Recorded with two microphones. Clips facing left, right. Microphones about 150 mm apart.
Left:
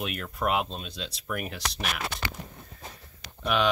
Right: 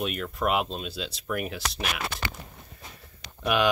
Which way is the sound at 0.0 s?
Centre (ahead or behind).